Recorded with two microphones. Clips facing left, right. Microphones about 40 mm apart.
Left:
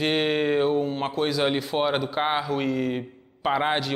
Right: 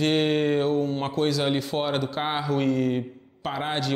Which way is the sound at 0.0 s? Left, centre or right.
Centre.